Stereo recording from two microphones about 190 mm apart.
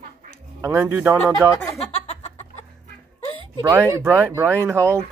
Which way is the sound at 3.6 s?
15° right (ahead or behind).